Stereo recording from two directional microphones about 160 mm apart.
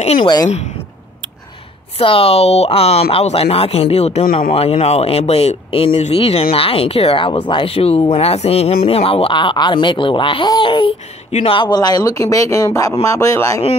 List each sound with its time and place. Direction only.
0.0 s speech: 40° left (ahead or behind)
2.0 s speech: 35° left (ahead or behind); by 13.6 s 20° left (ahead or behind)